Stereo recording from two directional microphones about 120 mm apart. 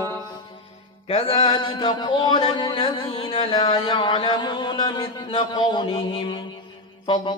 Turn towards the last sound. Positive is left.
turn(degrees=45)  # may be behind; listen again after turning